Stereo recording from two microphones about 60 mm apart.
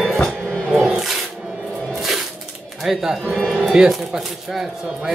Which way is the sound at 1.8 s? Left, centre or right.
Centre.